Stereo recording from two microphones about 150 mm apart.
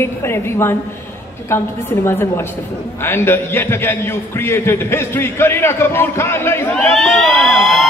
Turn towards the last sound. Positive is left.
turn(degrees=0)  # may be behind; listen again after turning